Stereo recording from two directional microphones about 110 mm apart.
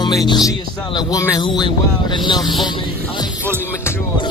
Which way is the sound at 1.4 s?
45° left (ahead or behind).